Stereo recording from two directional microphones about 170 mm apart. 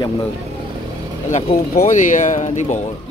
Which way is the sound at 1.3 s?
45° left (ahead or behind).